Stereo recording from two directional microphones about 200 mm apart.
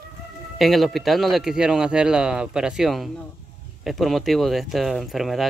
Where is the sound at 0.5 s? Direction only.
Centre (ahead or behind).